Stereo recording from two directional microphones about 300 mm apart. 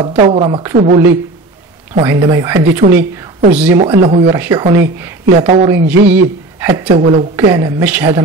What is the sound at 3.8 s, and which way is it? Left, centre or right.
Speech, centre.